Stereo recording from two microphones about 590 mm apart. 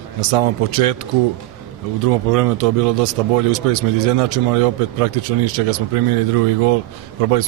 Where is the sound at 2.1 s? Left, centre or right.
Right.